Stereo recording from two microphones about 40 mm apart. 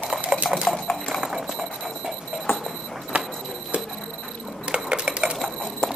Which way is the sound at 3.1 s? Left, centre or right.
Right.